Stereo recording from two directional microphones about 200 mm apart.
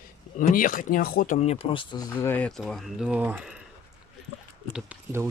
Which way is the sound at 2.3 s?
5° left (ahead or behind).